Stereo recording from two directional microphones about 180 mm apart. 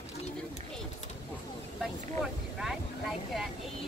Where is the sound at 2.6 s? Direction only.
Centre (ahead or behind).